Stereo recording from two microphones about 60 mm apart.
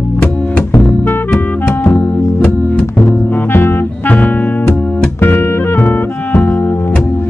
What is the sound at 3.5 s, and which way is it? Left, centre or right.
Music, left.